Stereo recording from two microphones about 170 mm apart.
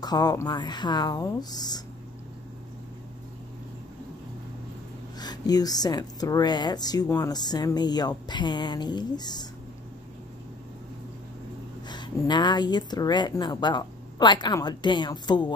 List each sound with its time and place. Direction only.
0.0 s speech: 25° left (ahead or behind)
5.2 s speech: 25° left (ahead or behind)
11.9 s speech: 25° left (ahead or behind)